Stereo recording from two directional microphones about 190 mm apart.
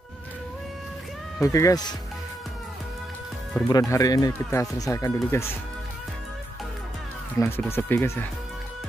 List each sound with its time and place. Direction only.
1.4 s speech: 15° left (ahead or behind)
3.6 s speech: 15° left (ahead or behind)
7.3 s speech: 15° left (ahead or behind)